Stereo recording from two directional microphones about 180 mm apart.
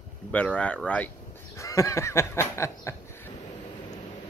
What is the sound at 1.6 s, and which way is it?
Speech, 15° left (ahead or behind).